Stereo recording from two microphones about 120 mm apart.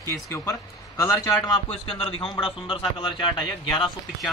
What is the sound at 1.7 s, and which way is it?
Speech, 50° left (ahead or behind).